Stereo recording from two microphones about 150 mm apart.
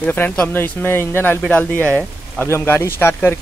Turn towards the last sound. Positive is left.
turn(degrees=15)  # may be behind; listen again after turning